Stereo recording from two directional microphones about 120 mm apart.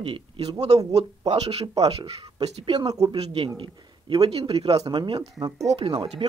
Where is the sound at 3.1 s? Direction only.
50° right (ahead or behind).